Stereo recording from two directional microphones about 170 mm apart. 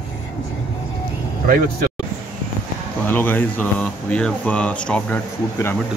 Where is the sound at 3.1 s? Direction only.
10° left (ahead or behind).